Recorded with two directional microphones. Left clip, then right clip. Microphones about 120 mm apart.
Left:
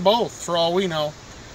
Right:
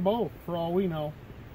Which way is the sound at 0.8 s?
10° left (ahead or behind).